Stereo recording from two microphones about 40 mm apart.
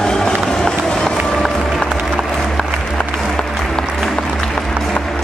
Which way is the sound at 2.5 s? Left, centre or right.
Centre.